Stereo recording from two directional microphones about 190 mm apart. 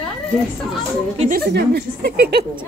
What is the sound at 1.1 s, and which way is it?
Speech, 35° right (ahead or behind).